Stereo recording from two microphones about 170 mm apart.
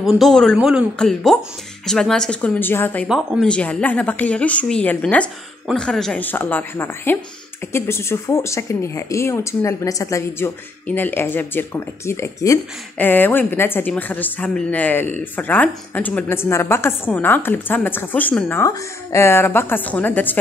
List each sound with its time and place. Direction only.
0.0 s speech: centre (ahead or behind)
3.1 s speech: centre (ahead or behind)
18.6 s speech: 15° left (ahead or behind)